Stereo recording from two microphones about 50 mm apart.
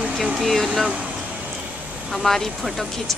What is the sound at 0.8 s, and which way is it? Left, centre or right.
Speech, right.